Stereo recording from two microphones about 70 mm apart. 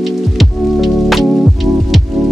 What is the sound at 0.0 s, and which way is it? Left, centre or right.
Music, centre.